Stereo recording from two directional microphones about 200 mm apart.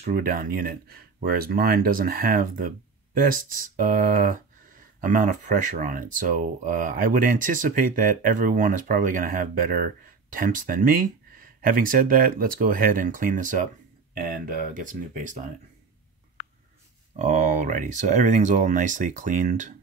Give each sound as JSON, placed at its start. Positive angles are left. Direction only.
{"t": 0.0, "sound": "speech", "side_deg": -45}
{"t": 17.2, "sound": "speech", "side_deg": -35}